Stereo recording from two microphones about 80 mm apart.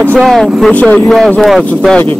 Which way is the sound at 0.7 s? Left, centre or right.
Centre.